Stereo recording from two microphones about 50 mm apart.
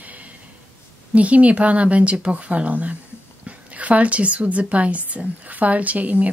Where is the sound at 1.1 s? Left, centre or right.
Right.